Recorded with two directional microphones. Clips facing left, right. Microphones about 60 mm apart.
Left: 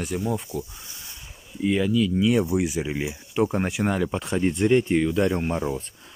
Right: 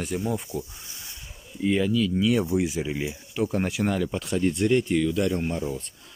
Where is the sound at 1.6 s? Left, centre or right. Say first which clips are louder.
Left 1 dB; centre.